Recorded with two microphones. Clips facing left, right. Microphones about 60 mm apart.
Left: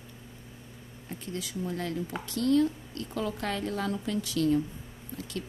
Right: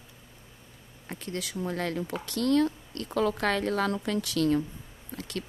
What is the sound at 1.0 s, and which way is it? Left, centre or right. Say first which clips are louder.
A woman's voice: right 2 dB; right.